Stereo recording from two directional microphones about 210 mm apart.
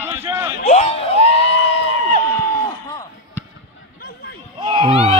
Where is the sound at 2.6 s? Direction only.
15° left (ahead or behind).